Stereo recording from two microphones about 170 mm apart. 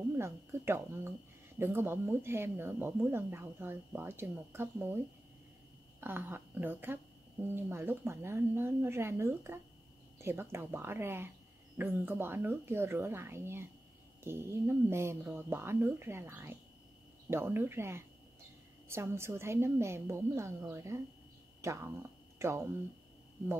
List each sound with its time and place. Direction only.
0.2 s a woman's voice: 15° right (ahead or behind)